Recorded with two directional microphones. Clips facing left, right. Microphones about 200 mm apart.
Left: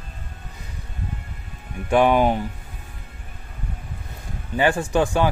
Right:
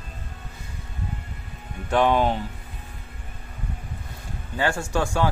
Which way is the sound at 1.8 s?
10° left (ahead or behind).